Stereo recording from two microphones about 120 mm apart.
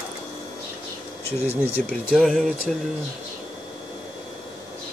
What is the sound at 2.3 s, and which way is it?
Speech, 5° left (ahead or behind).